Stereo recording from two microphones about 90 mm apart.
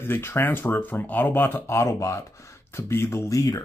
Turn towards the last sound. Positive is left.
turn(degrees=35)  # may be behind; listen again after turning